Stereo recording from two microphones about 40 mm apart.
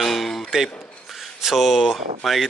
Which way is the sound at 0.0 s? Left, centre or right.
Centre.